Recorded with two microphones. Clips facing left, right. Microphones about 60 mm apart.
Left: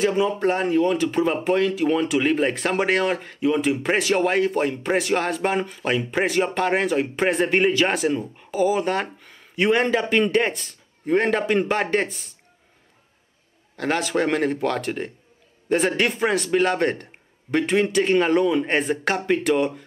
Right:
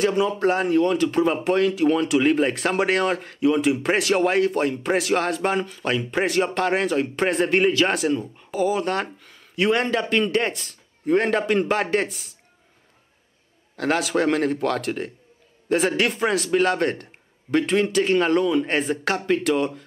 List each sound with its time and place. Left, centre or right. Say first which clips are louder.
0.3 s speech: right 1 dB; centre
13.7 s speech: right 1 dB; centre